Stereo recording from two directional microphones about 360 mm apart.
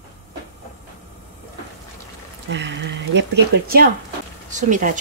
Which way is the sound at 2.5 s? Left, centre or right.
Right.